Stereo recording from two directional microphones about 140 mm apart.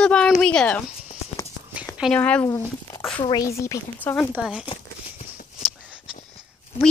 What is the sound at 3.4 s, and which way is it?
Speech, 20° left (ahead or behind).